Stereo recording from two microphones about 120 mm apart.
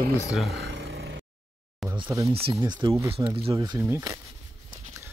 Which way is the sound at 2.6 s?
40° right (ahead or behind).